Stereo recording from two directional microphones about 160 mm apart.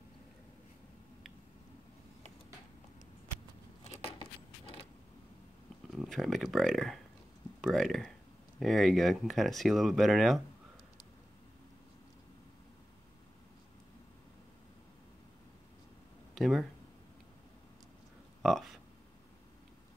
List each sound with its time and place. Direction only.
3.8 s a sound: 45° left (ahead or behind)
5.9 s speech: centre (ahead or behind)
16.3 s speech: centre (ahead or behind)
18.4 s speech: centre (ahead or behind)